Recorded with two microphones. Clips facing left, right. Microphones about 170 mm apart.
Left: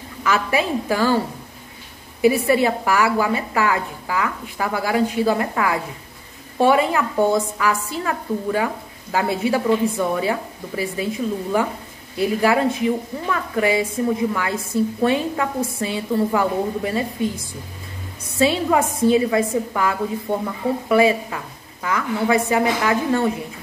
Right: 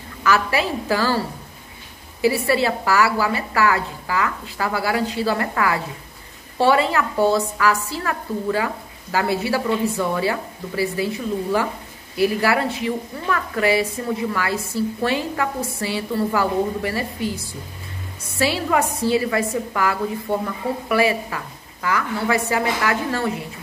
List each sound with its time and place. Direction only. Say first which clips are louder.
0.2 s a woman's voice: even; 20° left (ahead or behind)
2.2 s a woman's voice: left 2 dB; 20° left (ahead or behind)
18.4 s a woman's voice: left 2 dB; 20° left (ahead or behind)